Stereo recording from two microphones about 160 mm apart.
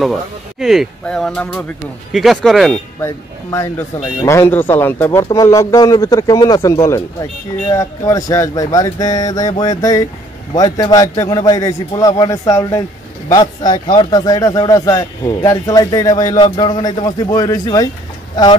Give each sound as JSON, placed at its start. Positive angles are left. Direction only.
{"t": 0.0, "sound": "speech", "side_deg": 0}
{"t": 3.0, "sound": "speech", "side_deg": 20}